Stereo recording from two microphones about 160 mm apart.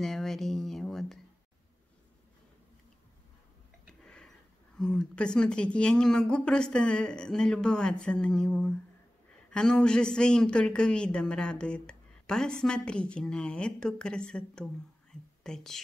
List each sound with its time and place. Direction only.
0.0 s speech: centre (ahead or behind)
4.0 s a sound: 5° left (ahead or behind)
4.7 s a woman's voice: 5° left (ahead or behind)